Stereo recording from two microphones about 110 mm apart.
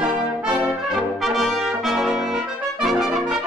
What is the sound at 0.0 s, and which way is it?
Brass instrument, 5° right (ahead or behind).